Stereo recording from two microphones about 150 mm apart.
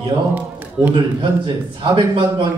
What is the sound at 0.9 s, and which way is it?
A man's voice, 35° right (ahead or behind).